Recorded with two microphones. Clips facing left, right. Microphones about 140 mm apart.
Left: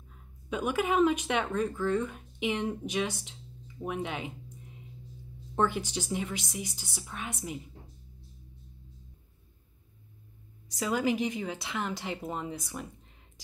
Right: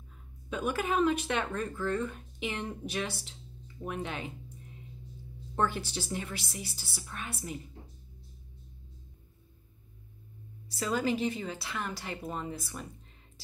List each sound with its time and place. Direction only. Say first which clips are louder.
0.5 s speech: left 2 dB; 15° left (ahead or behind)
5.6 s speech: left 2 dB; 15° left (ahead or behind)
10.7 s speech: left 2 dB; 15° left (ahead or behind)